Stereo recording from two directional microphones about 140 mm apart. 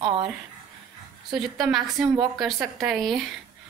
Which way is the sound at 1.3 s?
Centre (ahead or behind).